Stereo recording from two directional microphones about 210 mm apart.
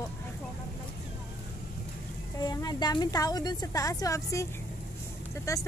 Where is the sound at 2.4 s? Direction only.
20° left (ahead or behind).